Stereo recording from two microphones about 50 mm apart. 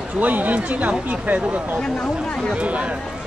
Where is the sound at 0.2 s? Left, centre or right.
Right.